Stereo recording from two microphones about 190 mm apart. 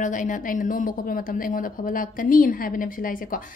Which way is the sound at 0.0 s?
45° left (ahead or behind).